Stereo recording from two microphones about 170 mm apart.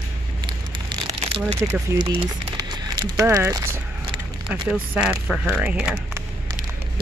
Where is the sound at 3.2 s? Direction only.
15° right (ahead or behind).